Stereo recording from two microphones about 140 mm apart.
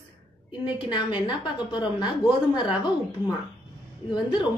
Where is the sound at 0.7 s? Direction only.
35° left (ahead or behind).